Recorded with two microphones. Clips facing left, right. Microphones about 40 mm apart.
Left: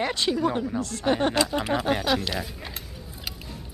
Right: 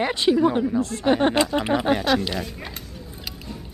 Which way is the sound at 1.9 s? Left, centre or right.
Centre.